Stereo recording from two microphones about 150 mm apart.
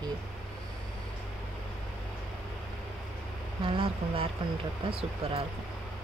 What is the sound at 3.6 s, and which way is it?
Speech, 35° right (ahead or behind).